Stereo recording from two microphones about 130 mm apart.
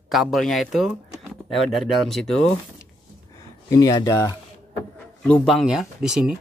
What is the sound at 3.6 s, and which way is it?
Speech, 30° left (ahead or behind).